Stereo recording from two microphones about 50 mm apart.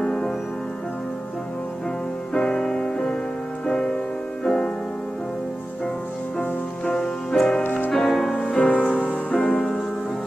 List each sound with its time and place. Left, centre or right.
0.0 s music: centre
2.3 s music: centre
6.9 s music: centre
8.4 s music: centre